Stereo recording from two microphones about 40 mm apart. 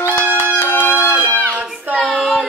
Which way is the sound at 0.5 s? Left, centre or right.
Left.